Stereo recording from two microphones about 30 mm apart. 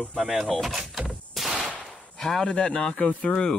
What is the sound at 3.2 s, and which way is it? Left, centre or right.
Speech, left.